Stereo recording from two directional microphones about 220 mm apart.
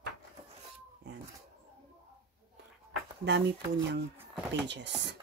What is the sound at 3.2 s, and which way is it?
Speech, 50° right (ahead or behind).